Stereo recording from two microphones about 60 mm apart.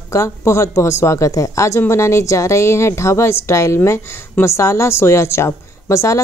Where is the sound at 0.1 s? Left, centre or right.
Left.